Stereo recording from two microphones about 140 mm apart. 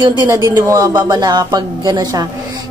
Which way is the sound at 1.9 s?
30° right (ahead or behind).